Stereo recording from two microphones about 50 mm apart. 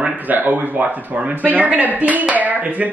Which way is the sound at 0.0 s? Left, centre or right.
Right.